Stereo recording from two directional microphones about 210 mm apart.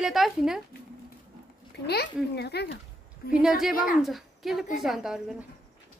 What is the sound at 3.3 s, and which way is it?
A woman's voice, 5° right (ahead or behind).